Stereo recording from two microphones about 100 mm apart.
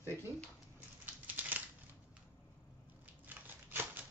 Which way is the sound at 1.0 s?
15° right (ahead or behind).